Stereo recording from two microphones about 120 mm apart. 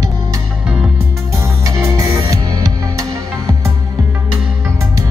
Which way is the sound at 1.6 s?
25° right (ahead or behind).